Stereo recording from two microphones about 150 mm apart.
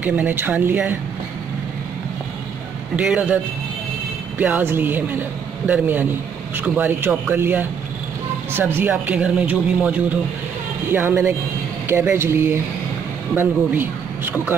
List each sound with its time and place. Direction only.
0.0 s speech: 10° right (ahead or behind)
3.0 s speech: 10° right (ahead or behind)
4.4 s speech: 10° right (ahead or behind)